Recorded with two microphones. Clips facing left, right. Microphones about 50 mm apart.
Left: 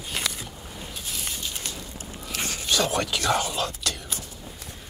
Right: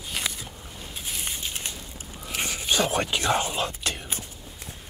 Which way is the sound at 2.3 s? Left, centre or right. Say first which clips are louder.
Right 1 dB; centre.